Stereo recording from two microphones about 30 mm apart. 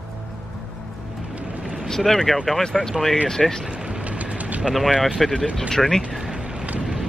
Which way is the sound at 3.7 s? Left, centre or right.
Right.